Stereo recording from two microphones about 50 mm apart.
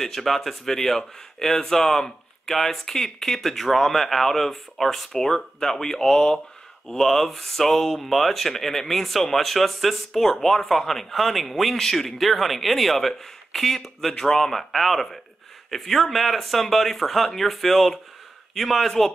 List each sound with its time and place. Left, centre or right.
0.0 s a man's voice: centre